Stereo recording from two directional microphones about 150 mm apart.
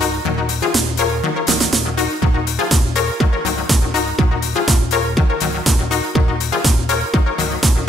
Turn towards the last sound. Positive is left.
turn(degrees=0)  # may be behind; listen again after turning